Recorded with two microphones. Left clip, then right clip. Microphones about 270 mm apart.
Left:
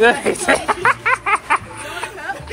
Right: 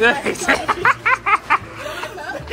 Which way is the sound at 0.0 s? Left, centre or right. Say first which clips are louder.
Left 2 dB; centre.